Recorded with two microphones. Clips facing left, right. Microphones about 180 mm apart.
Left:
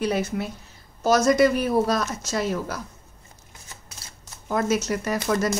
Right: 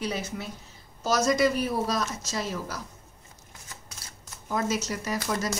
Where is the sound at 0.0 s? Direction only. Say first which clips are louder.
Left 7 dB; 60° left (ahead or behind).